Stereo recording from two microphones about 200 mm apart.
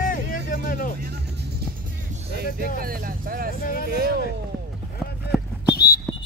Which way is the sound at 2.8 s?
45° right (ahead or behind).